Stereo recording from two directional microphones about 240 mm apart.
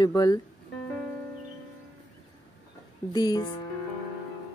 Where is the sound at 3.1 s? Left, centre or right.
Centre.